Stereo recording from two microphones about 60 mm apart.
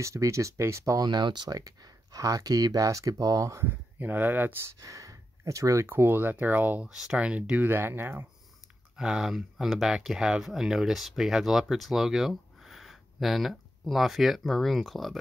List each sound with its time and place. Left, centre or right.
0.0 s speech: right
1.5 s speech: right
3.6 s speech: right
4.6 s speech: right
5.9 s speech: right
6.9 s speech: centre
7.7 s speech: right
8.9 s speech: centre